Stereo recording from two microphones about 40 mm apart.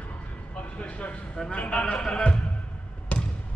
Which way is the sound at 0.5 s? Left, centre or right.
Left.